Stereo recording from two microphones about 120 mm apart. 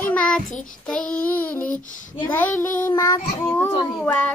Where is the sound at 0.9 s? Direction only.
10° left (ahead or behind).